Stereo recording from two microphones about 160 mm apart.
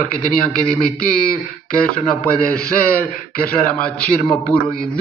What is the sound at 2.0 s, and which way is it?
A man's voice, 10° left (ahead or behind).